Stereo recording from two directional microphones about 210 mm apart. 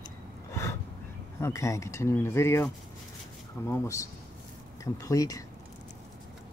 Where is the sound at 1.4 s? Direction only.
15° left (ahead or behind).